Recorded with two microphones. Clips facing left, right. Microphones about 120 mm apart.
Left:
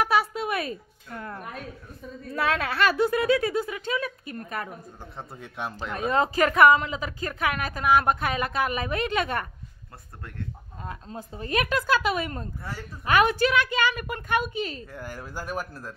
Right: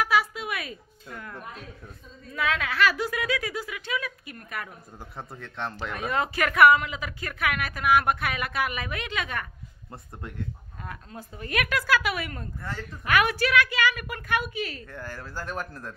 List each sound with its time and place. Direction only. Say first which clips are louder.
0.0 s music: left 2 dB; 30° left (ahead or behind)
2.3 s a woman's voice: left 2 dB; 35° left (ahead or behind)
5.4 s speech: even; 10° left (ahead or behind)
5.9 s a woman's voice: left 5 dB; 30° left (ahead or behind)
10.9 s a woman's voice: left 3 dB; 25° left (ahead or behind)
14.9 s speech: left 1 dB; 10° left (ahead or behind)